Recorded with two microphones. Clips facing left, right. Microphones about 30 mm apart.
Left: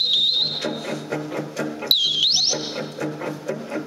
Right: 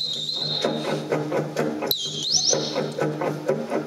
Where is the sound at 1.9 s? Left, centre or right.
Left.